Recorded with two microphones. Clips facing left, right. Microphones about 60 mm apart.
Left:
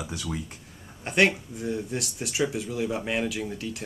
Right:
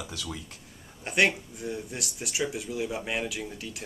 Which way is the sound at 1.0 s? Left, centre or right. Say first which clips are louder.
Left 2 dB; centre.